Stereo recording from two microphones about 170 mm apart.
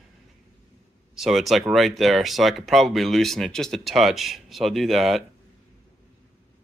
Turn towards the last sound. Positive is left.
turn(degrees=0)  # may be behind; listen again after turning